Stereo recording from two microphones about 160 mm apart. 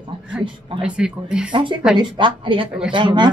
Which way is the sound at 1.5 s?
30° right (ahead or behind).